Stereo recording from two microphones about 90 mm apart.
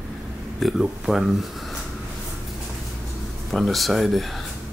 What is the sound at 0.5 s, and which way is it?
Speech, centre (ahead or behind).